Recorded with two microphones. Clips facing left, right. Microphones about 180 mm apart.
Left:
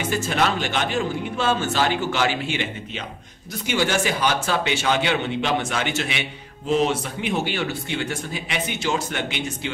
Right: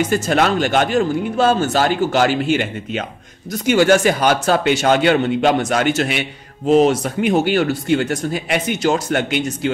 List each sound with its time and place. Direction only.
0.1 s a man's voice: 45° right (ahead or behind)